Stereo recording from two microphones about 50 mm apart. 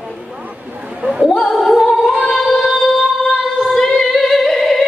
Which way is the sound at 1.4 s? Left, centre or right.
Centre.